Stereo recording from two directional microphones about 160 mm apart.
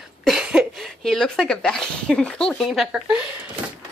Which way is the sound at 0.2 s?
5° right (ahead or behind).